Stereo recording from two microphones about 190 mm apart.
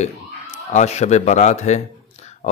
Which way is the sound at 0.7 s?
35° left (ahead or behind).